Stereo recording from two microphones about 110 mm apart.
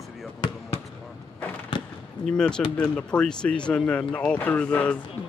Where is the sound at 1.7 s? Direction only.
45° left (ahead or behind).